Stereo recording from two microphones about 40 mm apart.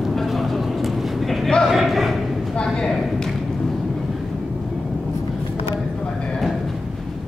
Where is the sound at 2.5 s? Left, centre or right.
Centre.